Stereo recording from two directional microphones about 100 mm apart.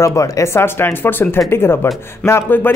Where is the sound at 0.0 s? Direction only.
30° left (ahead or behind).